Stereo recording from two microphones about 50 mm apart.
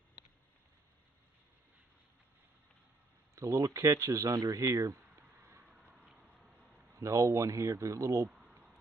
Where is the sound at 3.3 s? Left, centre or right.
Right.